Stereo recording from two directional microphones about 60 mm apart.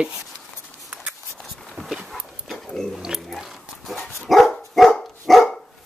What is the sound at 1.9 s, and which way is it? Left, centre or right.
Dog, centre.